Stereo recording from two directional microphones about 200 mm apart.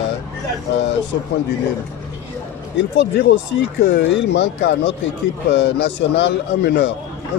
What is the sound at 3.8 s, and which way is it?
A man's voice, 55° left (ahead or behind).